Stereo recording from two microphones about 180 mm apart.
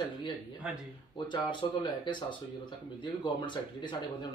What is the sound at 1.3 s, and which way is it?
Speech, 25° left (ahead or behind).